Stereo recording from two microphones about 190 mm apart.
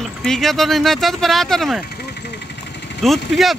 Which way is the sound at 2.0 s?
60° left (ahead or behind).